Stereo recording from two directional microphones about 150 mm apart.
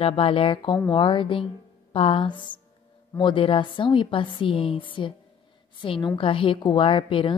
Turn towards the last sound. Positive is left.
turn(degrees=35)  # may be behind; listen again after turning